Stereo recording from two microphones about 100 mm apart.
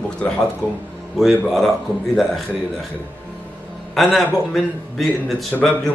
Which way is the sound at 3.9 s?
Centre (ahead or behind).